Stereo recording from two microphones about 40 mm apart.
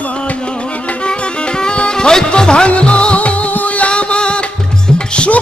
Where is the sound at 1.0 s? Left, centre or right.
Left.